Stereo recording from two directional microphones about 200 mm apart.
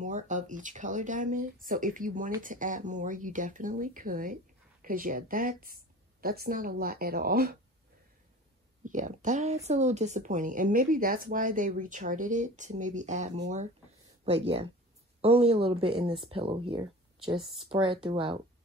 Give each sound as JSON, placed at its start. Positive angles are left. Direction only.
{"t": 0.0, "sound": "speech", "side_deg": -40}
{"t": 8.8, "sound": "speech", "side_deg": -40}